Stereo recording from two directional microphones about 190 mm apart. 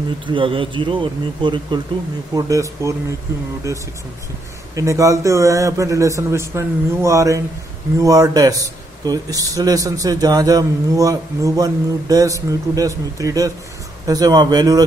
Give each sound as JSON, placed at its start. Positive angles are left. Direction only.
{"t": 0.3, "sound": "a man's voice", "side_deg": -25}